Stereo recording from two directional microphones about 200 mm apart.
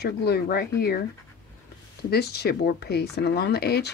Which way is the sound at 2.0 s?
55° left (ahead or behind).